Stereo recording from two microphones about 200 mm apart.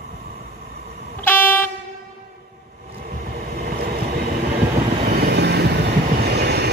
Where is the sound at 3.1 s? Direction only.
50° right (ahead or behind).